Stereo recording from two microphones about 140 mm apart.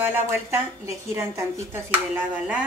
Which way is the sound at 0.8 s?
20° right (ahead or behind).